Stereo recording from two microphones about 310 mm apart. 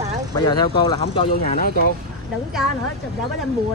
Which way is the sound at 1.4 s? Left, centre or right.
Left.